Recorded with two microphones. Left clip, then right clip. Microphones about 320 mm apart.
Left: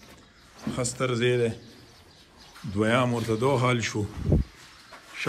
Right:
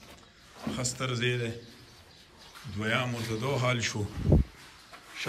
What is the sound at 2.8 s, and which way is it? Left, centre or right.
A man's voice, centre.